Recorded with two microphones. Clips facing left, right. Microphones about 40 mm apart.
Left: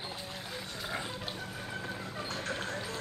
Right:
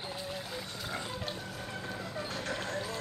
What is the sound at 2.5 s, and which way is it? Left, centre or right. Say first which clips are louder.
Clip-clop: right 1 dB; centre.